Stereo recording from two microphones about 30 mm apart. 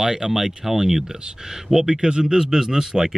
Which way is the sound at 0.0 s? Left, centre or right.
Centre.